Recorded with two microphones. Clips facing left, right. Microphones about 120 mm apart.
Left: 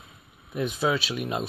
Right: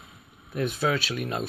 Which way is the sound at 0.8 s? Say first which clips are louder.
Left 2 dB; 10° left (ahead or behind).